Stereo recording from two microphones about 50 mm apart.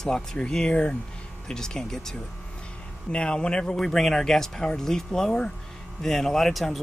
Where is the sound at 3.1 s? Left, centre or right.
Centre.